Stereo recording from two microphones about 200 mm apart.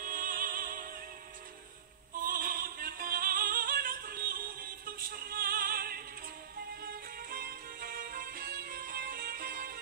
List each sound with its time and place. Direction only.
0.0 s music: 45° right (ahead or behind)
2.2 s music: 45° right (ahead or behind)